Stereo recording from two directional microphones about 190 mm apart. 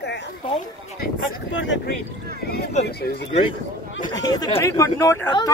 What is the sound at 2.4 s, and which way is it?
Speech, 55° left (ahead or behind).